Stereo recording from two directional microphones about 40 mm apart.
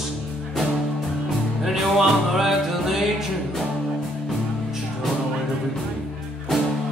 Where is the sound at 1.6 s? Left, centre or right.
Centre.